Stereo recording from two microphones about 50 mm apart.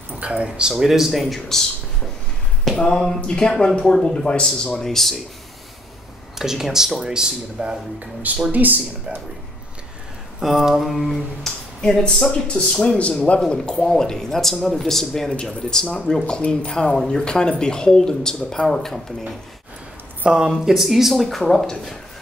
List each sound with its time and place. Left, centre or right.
0.2 s speech: right
0.5 s speech: centre
1.3 s speech: centre
2.7 s speech: centre
6.3 s speech: centre
8.5 s speech: right
10.4 s speech: centre; by 16.9 s left
16.9 s speech: centre
20.2 s speech: centre